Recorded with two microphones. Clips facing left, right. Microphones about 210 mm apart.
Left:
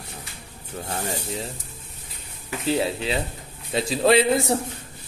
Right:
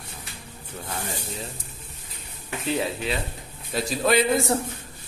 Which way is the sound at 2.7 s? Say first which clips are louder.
Left 3 dB; 30° left (ahead or behind).